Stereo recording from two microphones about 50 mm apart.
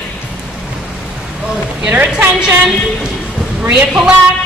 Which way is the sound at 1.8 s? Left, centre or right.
Right.